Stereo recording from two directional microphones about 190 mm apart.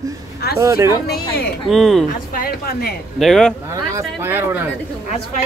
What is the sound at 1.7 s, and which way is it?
Speech, centre (ahead or behind).